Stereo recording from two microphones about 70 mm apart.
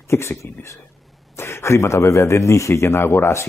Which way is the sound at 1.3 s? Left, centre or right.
Left.